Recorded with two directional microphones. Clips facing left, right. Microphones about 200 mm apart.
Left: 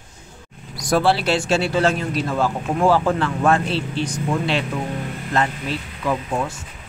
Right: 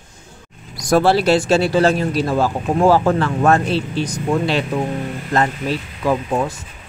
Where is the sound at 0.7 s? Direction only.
45° right (ahead or behind).